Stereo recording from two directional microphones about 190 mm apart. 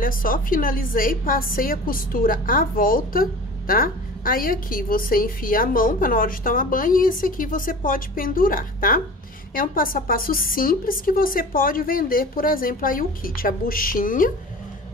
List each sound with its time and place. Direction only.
0.0 s a woman's voice: 50° left (ahead or behind)